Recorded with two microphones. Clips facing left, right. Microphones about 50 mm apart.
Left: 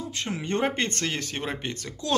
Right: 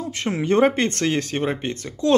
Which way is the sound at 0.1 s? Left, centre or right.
Right.